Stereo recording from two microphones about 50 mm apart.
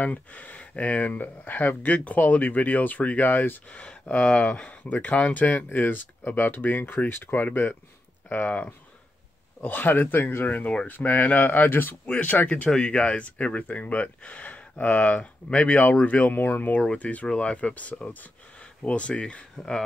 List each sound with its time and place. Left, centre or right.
0.0 s speech: left
3.6 s speech: left
4.6 s speech: left
10.9 s speech: left
12.4 s speech: left
16.3 s speech: left
16.8 s speech: left